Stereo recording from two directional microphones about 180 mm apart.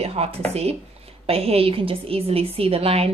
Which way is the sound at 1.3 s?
35° right (ahead or behind).